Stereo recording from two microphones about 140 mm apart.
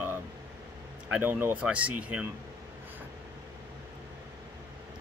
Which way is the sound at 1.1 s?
15° right (ahead or behind).